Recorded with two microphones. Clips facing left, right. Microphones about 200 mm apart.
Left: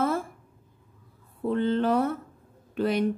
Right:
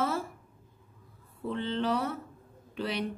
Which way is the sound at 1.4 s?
50° left (ahead or behind).